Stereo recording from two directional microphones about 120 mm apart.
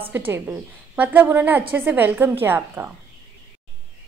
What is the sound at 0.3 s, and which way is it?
A woman's voice, 15° right (ahead or behind).